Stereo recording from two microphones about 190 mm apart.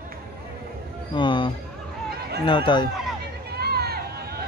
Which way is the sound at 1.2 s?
25° left (ahead or behind).